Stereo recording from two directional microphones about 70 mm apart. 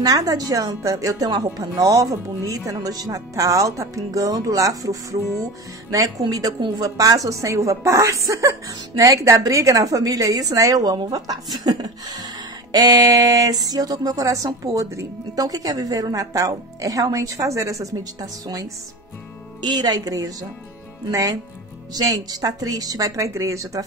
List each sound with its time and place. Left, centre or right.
0.0 s speech: right
12.7 s speech: right
19.6 s speech: right